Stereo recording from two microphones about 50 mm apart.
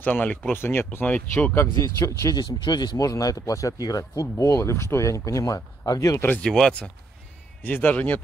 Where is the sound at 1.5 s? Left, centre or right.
Left.